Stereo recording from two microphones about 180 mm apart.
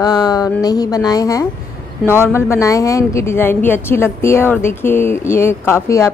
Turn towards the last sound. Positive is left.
turn(degrees=15)  # may be behind; listen again after turning